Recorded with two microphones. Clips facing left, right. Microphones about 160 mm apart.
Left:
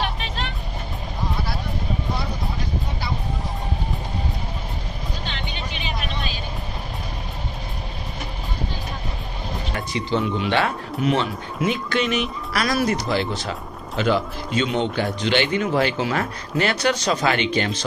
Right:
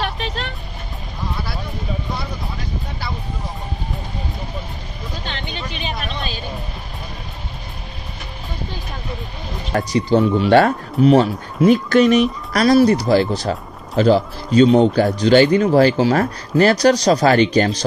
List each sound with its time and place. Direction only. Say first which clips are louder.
9.7 s speech: right 9 dB; 40° right (ahead or behind)